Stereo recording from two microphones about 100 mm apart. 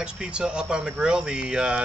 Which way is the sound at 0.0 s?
10° right (ahead or behind).